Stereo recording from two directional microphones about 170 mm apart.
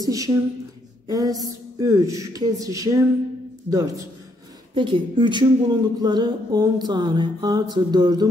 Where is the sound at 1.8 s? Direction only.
20° right (ahead or behind).